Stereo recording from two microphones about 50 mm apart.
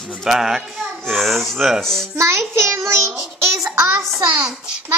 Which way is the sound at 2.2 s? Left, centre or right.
Right.